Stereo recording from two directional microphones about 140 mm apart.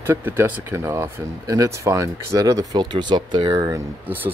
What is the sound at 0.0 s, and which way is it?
Speech, 15° right (ahead or behind).